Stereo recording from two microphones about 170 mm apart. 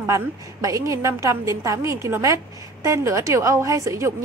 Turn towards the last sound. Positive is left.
turn(degrees=-15)  # may be behind; listen again after turning